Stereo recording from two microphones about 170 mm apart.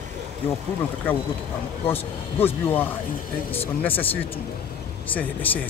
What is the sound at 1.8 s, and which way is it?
Speech, 10° left (ahead or behind).